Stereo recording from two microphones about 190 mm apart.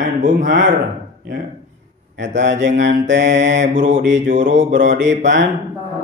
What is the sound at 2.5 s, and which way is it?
Mantra, 40° right (ahead or behind).